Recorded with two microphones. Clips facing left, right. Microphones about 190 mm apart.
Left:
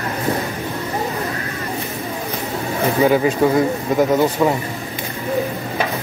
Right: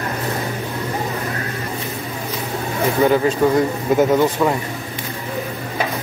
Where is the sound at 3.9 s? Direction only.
5° right (ahead or behind).